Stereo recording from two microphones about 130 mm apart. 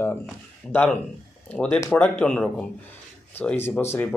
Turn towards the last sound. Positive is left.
turn(degrees=15)  # may be behind; listen again after turning